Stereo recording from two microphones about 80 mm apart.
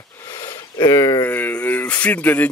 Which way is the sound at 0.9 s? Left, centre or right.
Left.